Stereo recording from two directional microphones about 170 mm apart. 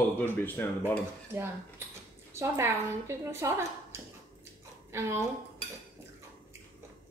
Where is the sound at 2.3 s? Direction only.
15° right (ahead or behind).